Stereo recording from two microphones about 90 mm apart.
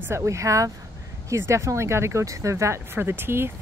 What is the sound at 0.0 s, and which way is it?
Speech, 30° right (ahead or behind).